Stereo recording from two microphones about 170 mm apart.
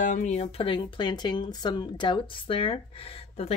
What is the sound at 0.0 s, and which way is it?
Speech, 45° left (ahead or behind).